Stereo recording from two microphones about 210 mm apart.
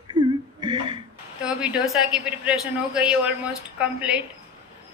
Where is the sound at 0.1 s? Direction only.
20° right (ahead or behind).